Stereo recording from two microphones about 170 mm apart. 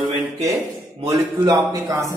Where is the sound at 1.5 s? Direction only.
20° right (ahead or behind).